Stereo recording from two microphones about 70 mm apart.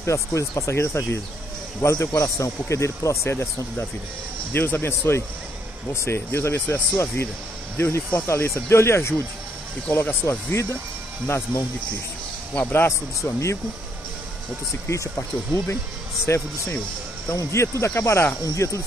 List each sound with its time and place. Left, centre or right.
0.0 s speech: left
10.5 s speech: left
12.7 s speech: left
14.9 s speech: left
18.4 s speech: left